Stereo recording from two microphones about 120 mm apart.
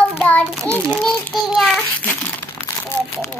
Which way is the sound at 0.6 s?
10° left (ahead or behind).